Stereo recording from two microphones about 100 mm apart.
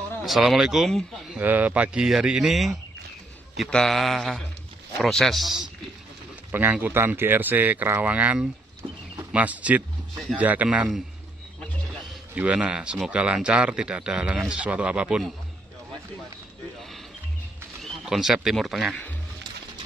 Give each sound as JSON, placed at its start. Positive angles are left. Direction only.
{"t": 0.2, "sound": "a man's voice", "side_deg": 0}
{"t": 1.4, "sound": "a man's voice", "side_deg": -15}
{"t": 6.5, "sound": "speech", "side_deg": -20}
{"t": 12.4, "sound": "speech", "side_deg": -10}
{"t": 17.8, "sound": "speech", "side_deg": -5}